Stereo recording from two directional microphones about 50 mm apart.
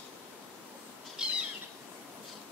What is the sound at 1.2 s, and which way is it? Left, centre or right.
Owl, centre.